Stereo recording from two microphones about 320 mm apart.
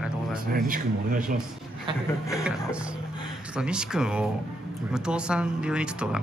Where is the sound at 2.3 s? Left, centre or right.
Centre.